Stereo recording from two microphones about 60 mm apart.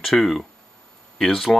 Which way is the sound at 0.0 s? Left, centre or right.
Centre.